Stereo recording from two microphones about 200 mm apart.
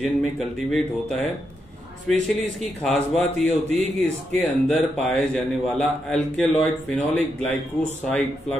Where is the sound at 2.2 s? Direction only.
Centre (ahead or behind).